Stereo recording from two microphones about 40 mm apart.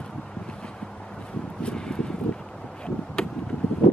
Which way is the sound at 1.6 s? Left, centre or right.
Left.